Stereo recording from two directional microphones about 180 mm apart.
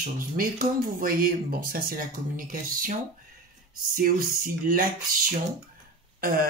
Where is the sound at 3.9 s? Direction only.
50° right (ahead or behind).